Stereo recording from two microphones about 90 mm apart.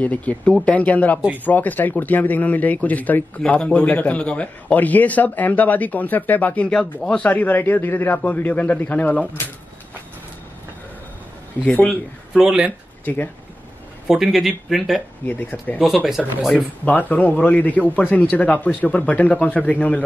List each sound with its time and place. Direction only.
0.0 s speech: 15° left (ahead or behind)
11.6 s speech: 15° left (ahead or behind)
11.9 s speech: 10° right (ahead or behind)
13.0 s speech: 20° left (ahead or behind)
14.0 s speech: 5° right (ahead or behind)
16.2 s speech: 5° right (ahead or behind)
16.8 s speech: 15° left (ahead or behind)